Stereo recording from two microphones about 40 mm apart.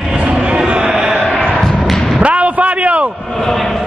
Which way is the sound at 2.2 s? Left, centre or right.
Right.